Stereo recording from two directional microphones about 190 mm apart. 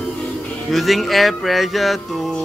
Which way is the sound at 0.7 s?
Centre (ahead or behind).